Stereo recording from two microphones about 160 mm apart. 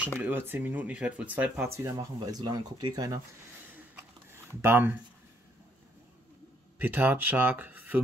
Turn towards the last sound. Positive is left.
turn(degrees=-10)  # may be behind; listen again after turning